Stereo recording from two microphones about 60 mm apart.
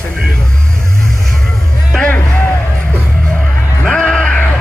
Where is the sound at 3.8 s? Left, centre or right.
Centre.